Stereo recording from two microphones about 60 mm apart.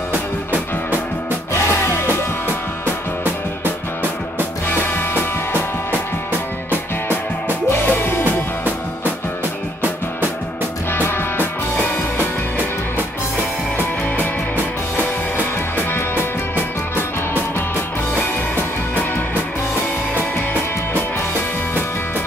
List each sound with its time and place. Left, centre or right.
1.5 s music: left
4.6 s music: left
7.7 s music: left
10.9 s music: left
15.0 s music: left